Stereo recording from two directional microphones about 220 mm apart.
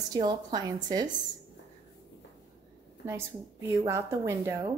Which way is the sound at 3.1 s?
10° right (ahead or behind).